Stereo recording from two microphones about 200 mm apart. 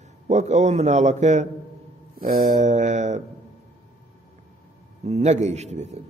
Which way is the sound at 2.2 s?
50° right (ahead or behind).